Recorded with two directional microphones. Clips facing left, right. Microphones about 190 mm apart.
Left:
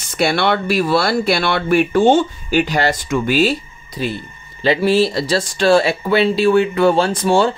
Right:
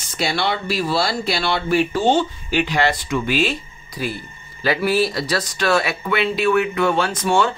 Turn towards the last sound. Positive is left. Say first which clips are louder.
# left 4 dB
turn(degrees=30)  # may be behind; listen again after turning